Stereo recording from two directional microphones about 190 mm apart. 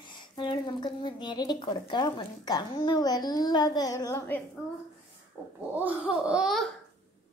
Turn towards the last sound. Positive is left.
turn(degrees=0)  # may be behind; listen again after turning